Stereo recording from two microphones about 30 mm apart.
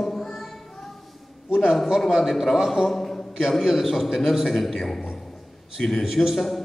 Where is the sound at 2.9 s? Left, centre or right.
Centre.